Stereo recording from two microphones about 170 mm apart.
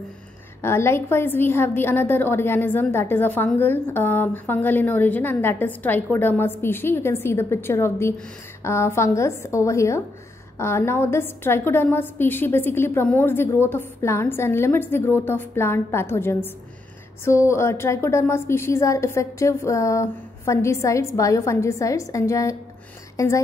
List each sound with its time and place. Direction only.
0.6 s a woman's voice: 15° left (ahead or behind)